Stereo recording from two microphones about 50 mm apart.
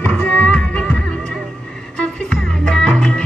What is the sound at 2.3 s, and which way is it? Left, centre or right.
Music, centre.